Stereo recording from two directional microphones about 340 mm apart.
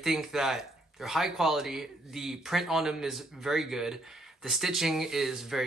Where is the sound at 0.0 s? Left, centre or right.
Centre.